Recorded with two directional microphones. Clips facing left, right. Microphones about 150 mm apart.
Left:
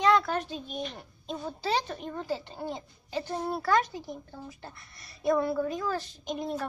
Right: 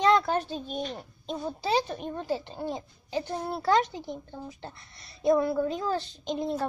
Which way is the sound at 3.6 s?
25° right (ahead or behind).